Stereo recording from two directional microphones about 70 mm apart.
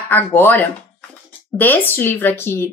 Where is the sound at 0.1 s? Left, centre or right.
Left.